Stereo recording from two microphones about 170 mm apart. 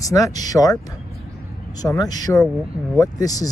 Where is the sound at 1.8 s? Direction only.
20° left (ahead or behind).